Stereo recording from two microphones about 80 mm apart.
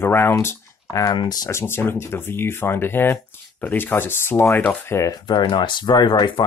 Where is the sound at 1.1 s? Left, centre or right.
Left.